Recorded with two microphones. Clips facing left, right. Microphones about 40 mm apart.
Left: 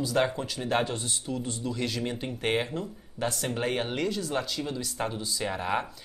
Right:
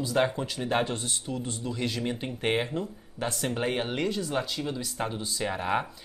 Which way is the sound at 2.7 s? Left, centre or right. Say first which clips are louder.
Right 2 dB; right.